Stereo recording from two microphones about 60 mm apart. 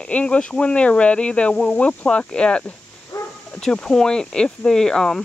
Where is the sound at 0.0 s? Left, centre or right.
Centre.